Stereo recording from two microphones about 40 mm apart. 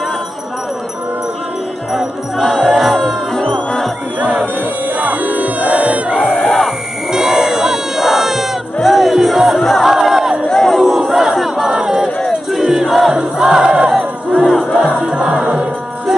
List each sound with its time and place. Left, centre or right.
1.9 s music: centre
3.3 s music: left
4.9 s music: right
5.9 s battle cry: right
6.2 s crowd: centre
8.8 s music: centre
9.8 s a sound: centre
10.5 s crowd: centre
10.8 s battle cry: centre
11.7 s crowd: centre
12.4 s battle cry: centre
13.2 s crowd: centre
14.4 s music: centre
15.2 s music: centre